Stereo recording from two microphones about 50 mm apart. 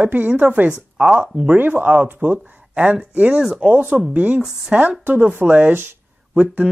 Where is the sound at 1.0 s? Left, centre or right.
Centre.